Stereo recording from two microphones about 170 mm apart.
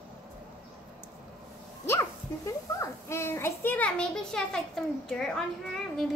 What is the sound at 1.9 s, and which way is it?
A woman's voice, 15° left (ahead or behind).